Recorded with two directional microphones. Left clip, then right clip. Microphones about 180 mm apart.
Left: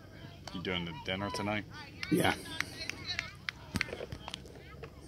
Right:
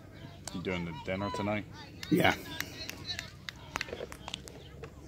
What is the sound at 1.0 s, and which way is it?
Speech, 60° right (ahead or behind).